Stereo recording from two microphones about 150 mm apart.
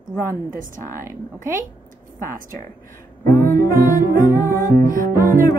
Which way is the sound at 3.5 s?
70° right (ahead or behind).